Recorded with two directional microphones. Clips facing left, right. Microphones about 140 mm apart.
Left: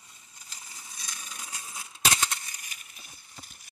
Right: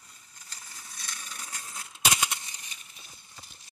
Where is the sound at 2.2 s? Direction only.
20° right (ahead or behind).